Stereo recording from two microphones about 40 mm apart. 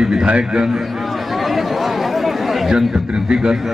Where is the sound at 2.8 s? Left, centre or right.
Right.